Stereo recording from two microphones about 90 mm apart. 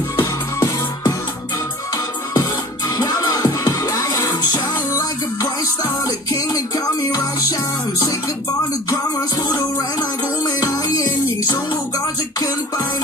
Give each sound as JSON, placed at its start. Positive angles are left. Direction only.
{"t": 0.2, "sound": "music", "side_deg": 40}
{"t": 3.0, "sound": "music", "side_deg": 40}
{"t": 6.3, "sound": "music", "side_deg": 40}
{"t": 10.6, "sound": "music", "side_deg": 40}